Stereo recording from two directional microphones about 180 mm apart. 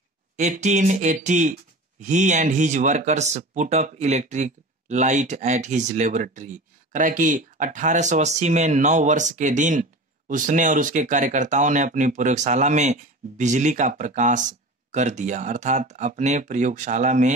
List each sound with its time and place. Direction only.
0.4 s speech: 40° right (ahead or behind)